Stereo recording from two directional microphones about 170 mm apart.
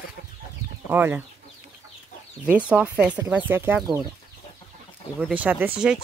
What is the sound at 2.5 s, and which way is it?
Speech, 5° right (ahead or behind).